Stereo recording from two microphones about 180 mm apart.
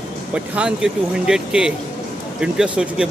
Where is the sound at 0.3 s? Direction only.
5° right (ahead or behind).